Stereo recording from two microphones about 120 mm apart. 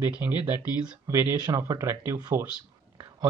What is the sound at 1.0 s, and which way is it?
Speech, 25° right (ahead or behind).